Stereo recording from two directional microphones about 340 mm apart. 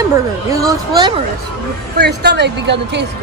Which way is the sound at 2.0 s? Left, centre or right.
Right.